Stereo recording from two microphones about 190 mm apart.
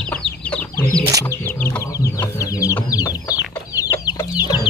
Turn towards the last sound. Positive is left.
turn(degrees=20)  # may be behind; listen again after turning